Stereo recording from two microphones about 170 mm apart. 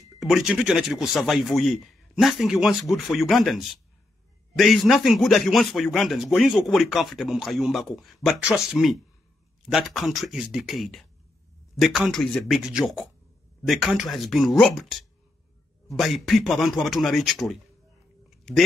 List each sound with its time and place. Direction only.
0.2 s a man's voice: centre (ahead or behind)